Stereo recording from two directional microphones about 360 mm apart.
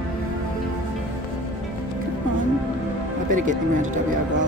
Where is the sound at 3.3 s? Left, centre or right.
Right.